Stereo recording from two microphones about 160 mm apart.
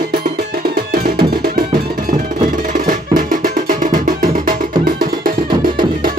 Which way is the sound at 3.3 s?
60° right (ahead or behind).